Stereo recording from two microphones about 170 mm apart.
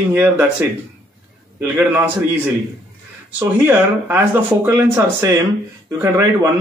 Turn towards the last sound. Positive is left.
turn(degrees=-15)  # may be behind; listen again after turning